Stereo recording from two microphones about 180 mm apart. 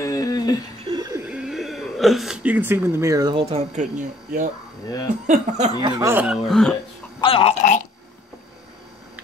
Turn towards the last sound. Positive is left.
turn(degrees=35)  # may be behind; listen again after turning